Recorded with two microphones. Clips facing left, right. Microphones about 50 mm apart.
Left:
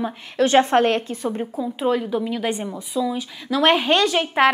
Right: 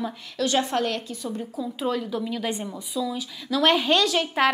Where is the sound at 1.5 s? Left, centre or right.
Left.